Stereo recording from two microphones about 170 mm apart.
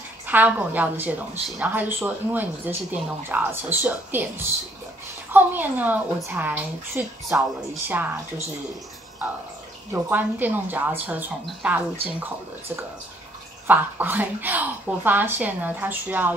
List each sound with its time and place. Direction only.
0.3 s a woman's voice: 10° right (ahead or behind)
9.9 s a woman's voice: 10° right (ahead or behind)
13.7 s a woman's voice: 10° right (ahead or behind)